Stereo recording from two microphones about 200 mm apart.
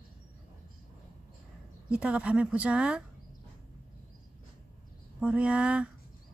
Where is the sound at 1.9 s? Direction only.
5° right (ahead or behind).